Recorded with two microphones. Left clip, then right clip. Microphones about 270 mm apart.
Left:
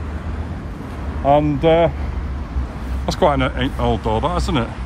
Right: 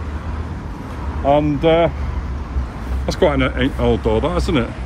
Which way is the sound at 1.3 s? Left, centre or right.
Left.